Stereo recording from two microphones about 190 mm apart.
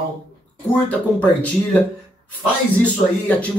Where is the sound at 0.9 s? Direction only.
10° left (ahead or behind).